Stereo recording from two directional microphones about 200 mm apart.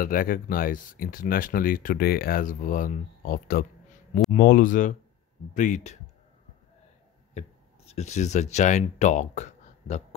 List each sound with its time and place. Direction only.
0.0 s speech: 45° left (ahead or behind)
7.3 s speech: 35° left (ahead or behind)